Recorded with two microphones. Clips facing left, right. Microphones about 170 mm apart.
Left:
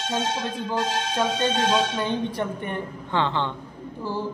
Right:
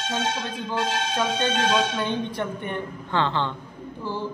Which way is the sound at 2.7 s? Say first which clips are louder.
Right 2 dB; 15° left (ahead or behind).